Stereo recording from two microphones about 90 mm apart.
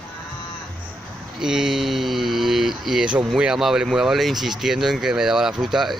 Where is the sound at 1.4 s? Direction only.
5° right (ahead or behind).